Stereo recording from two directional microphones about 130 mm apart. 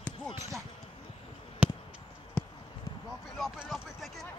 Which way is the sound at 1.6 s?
10° right (ahead or behind).